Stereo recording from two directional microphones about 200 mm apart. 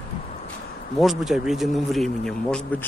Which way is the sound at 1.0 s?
Centre (ahead or behind).